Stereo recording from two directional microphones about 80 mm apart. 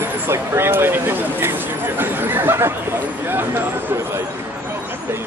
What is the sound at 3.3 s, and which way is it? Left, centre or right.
Speech, right.